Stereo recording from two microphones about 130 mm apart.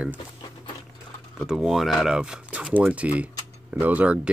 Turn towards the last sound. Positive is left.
turn(degrees=-10)  # may be behind; listen again after turning